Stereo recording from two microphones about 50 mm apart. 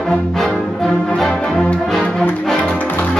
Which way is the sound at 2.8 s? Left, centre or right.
Left.